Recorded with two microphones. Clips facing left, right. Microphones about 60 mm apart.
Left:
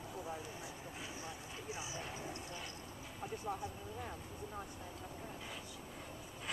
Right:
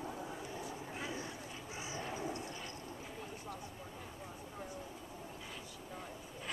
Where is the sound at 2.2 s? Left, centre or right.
Right.